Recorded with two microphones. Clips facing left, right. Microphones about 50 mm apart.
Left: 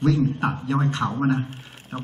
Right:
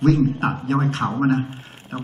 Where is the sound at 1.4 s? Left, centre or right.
Centre.